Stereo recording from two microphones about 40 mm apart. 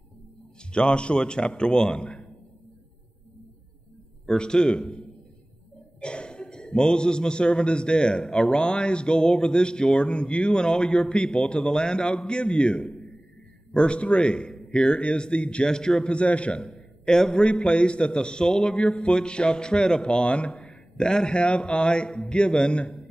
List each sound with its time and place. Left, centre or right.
0.7 s a man's voice: left
4.3 s a man's voice: centre
17.0 s a man's voice: centre
18.8 s a man's voice: left
20.6 s a man's voice: centre